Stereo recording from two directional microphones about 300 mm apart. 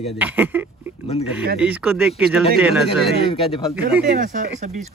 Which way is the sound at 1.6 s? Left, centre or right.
Centre.